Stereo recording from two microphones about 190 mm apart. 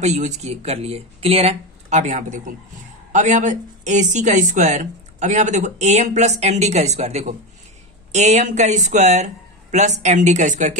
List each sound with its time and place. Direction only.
0.0 s speech: 40° right (ahead or behind)